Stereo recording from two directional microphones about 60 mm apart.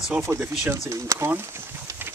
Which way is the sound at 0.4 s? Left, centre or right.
Right.